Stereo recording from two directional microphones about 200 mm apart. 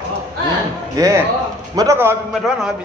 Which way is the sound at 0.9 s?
15° right (ahead or behind).